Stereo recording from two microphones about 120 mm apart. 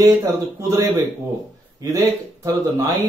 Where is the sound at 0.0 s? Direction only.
25° right (ahead or behind).